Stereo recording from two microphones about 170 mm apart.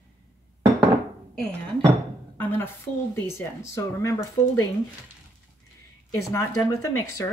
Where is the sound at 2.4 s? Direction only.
15° left (ahead or behind).